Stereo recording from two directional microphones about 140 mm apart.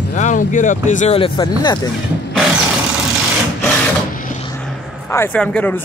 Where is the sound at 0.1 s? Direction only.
60° left (ahead or behind).